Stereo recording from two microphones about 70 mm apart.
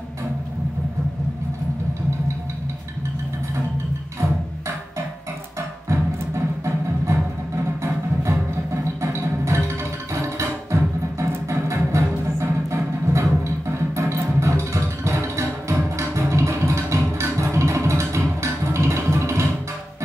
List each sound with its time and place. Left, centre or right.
5.9 s music: right